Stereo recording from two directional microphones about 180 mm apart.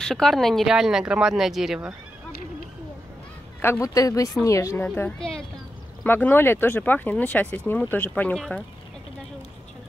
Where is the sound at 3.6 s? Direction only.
15° left (ahead or behind).